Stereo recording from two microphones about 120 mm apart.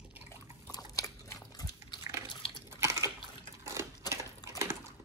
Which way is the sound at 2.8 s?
25° right (ahead or behind).